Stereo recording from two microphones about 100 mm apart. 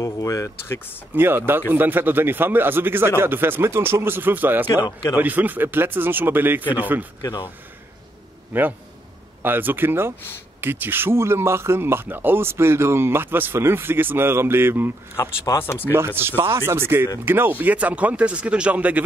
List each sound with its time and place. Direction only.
0.0 s speech: 30° left (ahead or behind)
1.1 s speech: 20° right (ahead or behind)
7.2 s speech: 35° left (ahead or behind)
8.5 s speech: 20° right (ahead or behind)
15.1 s speech: 25° left (ahead or behind)
16.2 s speech: 25° right (ahead or behind)